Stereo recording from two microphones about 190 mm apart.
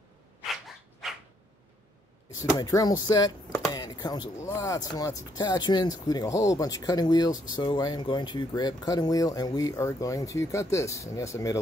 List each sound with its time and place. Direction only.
2.6 s speech: 20° left (ahead or behind)